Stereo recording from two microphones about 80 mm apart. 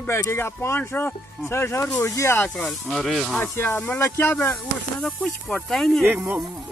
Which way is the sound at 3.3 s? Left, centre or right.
Left.